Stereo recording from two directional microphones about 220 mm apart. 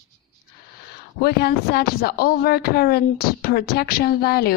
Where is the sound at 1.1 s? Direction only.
45° left (ahead or behind).